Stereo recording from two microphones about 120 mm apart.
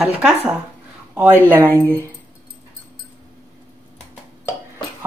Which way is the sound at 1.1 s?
10° right (ahead or behind).